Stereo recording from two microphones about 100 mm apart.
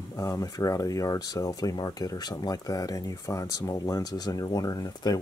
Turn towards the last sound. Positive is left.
turn(degrees=40)  # may be behind; listen again after turning